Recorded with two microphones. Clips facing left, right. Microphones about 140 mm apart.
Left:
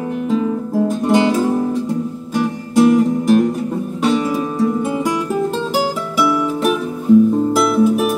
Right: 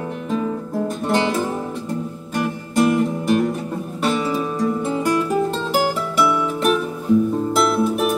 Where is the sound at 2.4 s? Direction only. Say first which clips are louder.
Left 5 dB; centre (ahead or behind).